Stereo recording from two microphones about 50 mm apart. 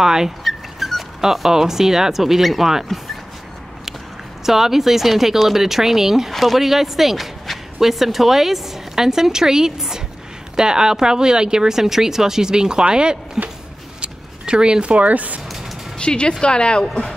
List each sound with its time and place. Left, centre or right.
0.0 s speech: centre
4.5 s speech: centre; by 15.4 s right
16.0 s a woman's voice: centre